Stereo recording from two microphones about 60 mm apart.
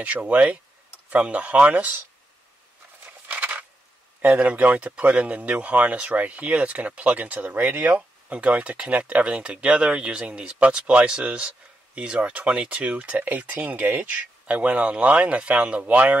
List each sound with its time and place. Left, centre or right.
0.0 s speech: right
3.3 s a sound: right
4.2 s speech: right